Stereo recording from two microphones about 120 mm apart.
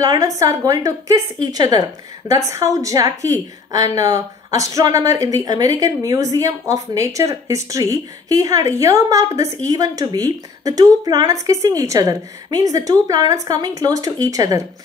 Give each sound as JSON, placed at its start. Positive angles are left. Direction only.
{"t": 0.0, "sound": "a woman's voice", "side_deg": -30}